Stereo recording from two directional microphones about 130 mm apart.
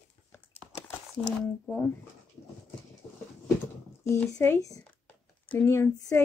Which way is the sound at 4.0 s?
15° left (ahead or behind).